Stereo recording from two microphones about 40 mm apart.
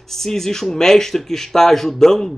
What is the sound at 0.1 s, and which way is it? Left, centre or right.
Speech, centre.